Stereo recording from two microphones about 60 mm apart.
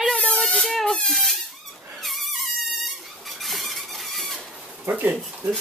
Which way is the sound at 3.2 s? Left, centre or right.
Centre.